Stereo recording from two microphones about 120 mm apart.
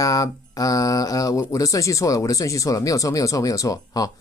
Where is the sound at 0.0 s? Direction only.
30° left (ahead or behind).